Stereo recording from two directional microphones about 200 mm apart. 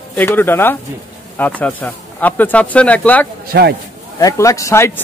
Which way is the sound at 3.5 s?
55° right (ahead or behind).